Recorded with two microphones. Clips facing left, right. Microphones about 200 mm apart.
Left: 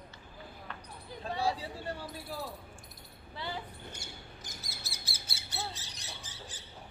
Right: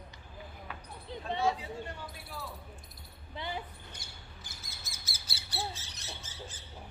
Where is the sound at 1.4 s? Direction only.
35° left (ahead or behind).